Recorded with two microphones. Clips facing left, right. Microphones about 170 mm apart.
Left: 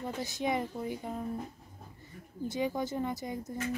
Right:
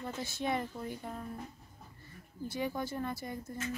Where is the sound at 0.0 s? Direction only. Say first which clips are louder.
Left 3 dB; 15° left (ahead or behind).